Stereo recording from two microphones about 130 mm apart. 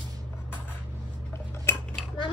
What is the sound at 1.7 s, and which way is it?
Cutlery, 15° left (ahead or behind).